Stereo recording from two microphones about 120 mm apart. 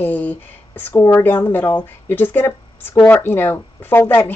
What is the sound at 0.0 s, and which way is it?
Speech, 15° left (ahead or behind).